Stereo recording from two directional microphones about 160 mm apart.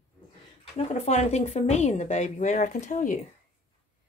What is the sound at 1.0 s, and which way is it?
Speech, 45° left (ahead or behind).